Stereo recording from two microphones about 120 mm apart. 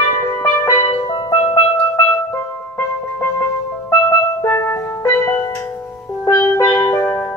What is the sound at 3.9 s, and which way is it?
Music, 25° left (ahead or behind).